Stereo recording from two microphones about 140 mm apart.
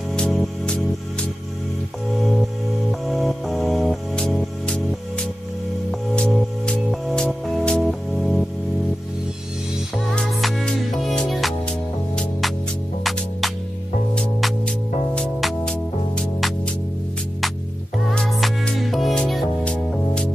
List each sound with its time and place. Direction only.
0.1 s music: 5° left (ahead or behind)
2.9 s music: centre (ahead or behind)
5.9 s music: 5° left (ahead or behind)
9.9 s music: centre (ahead or behind)
14.1 s music: 5° left (ahead or behind)
17.9 s music: centre (ahead or behind)